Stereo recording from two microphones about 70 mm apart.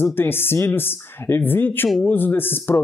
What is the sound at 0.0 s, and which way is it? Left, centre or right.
Speech, left.